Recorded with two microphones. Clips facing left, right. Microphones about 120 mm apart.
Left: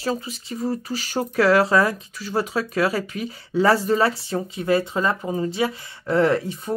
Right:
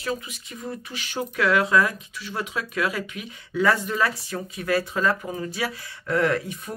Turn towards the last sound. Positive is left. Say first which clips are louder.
# left 4 dB
turn(degrees=30)  # may be behind; listen again after turning